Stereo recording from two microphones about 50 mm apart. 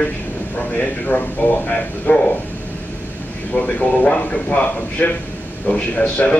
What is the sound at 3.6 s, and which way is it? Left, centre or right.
Speech, left.